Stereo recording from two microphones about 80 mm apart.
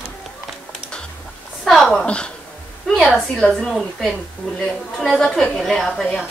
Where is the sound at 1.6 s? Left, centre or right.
Centre.